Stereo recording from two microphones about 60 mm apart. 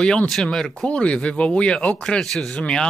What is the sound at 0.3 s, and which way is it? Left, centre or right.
Speech, centre.